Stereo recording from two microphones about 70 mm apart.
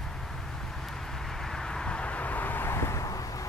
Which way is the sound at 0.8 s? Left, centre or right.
Centre.